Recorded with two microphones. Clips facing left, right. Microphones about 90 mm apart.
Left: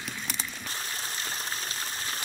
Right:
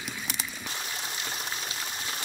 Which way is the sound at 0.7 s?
40° left (ahead or behind).